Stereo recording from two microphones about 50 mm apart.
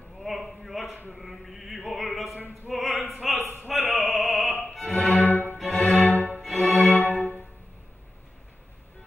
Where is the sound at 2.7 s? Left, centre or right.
Centre.